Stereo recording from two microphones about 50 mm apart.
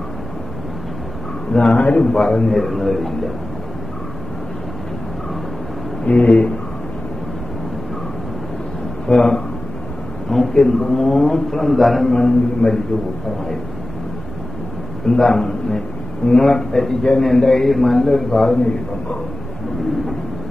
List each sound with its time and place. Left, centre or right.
1.5 s a man's voice: centre
6.1 s speech: centre
9.0 s a man's voice: centre
12.1 s a man's voice: centre
15.0 s a man's voice: centre